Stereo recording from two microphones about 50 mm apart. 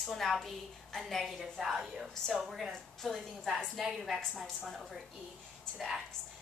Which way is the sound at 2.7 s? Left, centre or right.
Centre.